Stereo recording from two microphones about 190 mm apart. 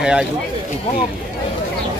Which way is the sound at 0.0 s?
5° right (ahead or behind).